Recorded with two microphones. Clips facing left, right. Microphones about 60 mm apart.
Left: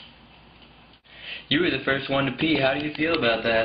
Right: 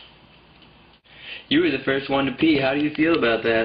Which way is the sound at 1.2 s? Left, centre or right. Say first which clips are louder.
Right 2 dB; centre.